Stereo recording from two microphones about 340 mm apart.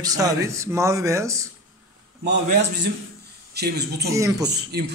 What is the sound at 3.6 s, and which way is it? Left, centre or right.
Speech, right.